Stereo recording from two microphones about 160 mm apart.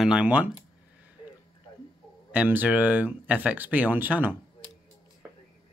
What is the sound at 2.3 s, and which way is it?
Speech, 10° right (ahead or behind).